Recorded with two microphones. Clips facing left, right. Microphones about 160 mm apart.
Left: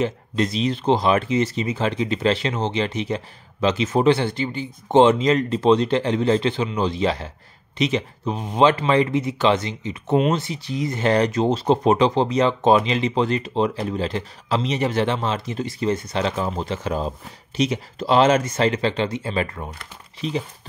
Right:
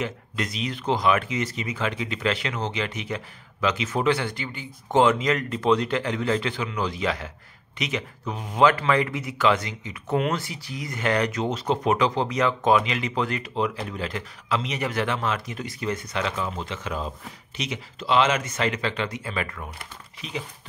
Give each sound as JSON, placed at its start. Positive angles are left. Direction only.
{"t": 0.0, "sound": "speech", "side_deg": 30}